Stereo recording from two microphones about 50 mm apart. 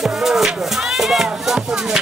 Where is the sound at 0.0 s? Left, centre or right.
Centre.